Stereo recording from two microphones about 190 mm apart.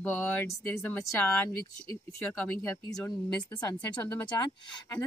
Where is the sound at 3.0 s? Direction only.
15° left (ahead or behind).